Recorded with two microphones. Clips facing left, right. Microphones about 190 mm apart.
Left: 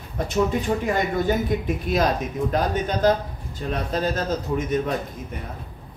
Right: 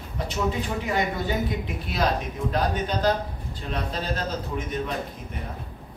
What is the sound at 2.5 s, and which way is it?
Speech, 45° left (ahead or behind).